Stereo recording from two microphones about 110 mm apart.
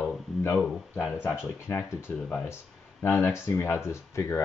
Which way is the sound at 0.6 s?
5° left (ahead or behind).